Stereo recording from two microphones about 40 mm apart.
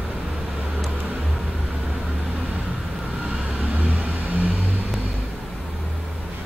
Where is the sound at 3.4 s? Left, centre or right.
Right.